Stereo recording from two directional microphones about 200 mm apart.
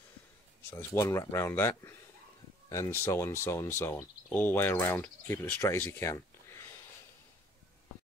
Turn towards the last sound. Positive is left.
turn(degrees=15)  # may be behind; listen again after turning